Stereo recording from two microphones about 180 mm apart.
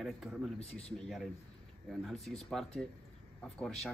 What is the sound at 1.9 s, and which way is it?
Speech, centre (ahead or behind).